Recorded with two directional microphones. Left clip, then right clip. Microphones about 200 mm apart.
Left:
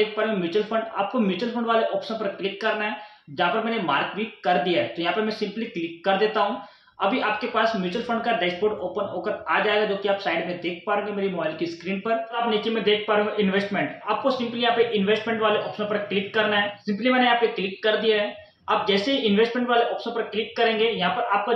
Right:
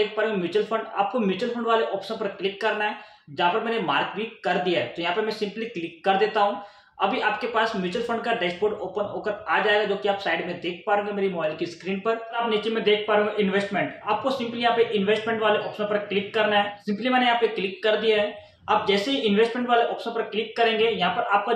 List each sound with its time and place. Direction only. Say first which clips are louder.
0.1 s a man's voice: even; centre (ahead or behind)